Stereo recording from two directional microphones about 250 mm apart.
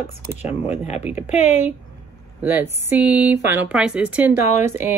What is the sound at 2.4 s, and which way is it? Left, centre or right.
Speech, centre.